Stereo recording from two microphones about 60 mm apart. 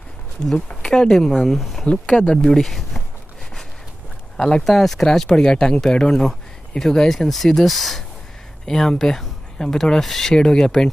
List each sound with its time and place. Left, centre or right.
0.8 s speech: centre
1.9 s speech: centre
2.4 s speech: centre
4.4 s speech: centre